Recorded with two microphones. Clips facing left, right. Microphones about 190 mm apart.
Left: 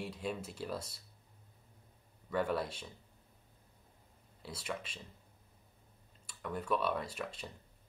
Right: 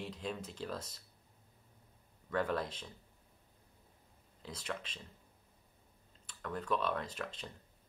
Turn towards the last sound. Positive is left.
turn(degrees=5)  # may be behind; listen again after turning